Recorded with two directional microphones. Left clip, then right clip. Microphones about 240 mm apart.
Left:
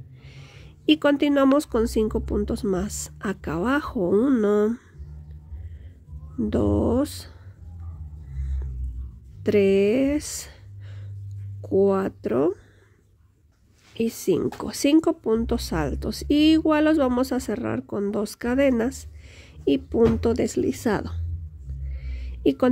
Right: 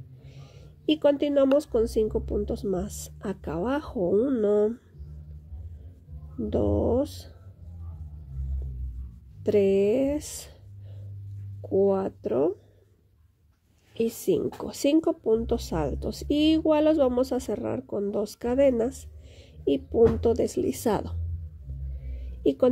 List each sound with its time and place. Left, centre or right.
0.2 s speech: centre
6.5 s speech: centre
9.4 s speech: centre
11.6 s speech: centre
13.9 s speech: centre
22.1 s a sound: centre